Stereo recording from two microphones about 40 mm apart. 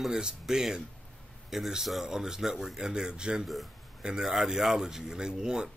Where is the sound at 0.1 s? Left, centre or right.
Centre.